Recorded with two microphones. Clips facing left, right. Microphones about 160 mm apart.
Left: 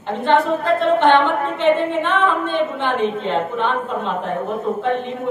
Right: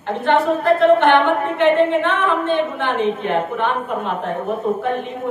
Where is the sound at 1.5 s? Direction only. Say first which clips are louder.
Right 3 dB; 20° left (ahead or behind).